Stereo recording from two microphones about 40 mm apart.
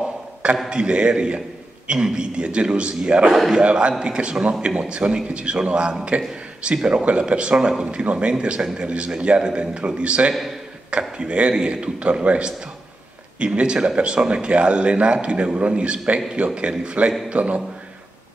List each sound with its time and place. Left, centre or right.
0.7 s a man's voice: right